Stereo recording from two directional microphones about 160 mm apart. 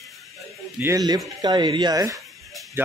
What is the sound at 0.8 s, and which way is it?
Speech, 20° right (ahead or behind).